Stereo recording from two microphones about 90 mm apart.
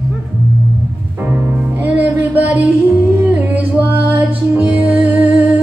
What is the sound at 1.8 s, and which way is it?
Music, 15° right (ahead or behind).